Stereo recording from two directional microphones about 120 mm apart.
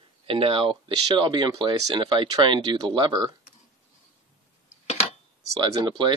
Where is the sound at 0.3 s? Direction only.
50° right (ahead or behind).